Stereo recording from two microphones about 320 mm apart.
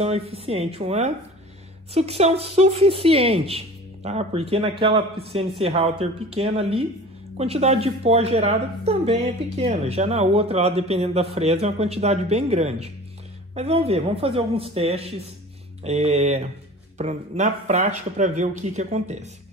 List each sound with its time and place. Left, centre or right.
0.0 s a woman's voice: centre